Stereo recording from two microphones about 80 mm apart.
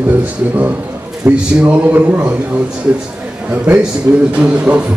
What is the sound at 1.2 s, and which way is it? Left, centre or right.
A man's voice, centre.